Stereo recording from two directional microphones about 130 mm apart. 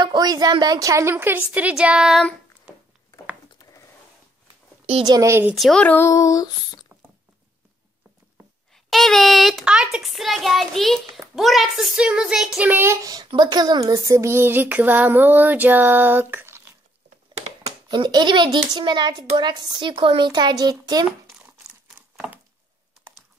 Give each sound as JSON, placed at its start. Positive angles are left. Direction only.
{"t": 0.0, "sound": "speech", "side_deg": -30}
{"t": 5.0, "sound": "a child's voice", "side_deg": -25}
{"t": 5.5, "sound": "speech", "side_deg": 0}
{"t": 8.7, "sound": "a child's voice", "side_deg": 0}
{"t": 12.6, "sound": "a child's voice", "side_deg": -20}
{"t": 17.8, "sound": "a child's voice", "side_deg": -35}
{"t": 21.8, "sound": "a sound", "side_deg": -5}